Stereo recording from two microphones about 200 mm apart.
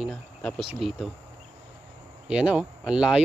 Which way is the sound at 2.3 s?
5° right (ahead or behind).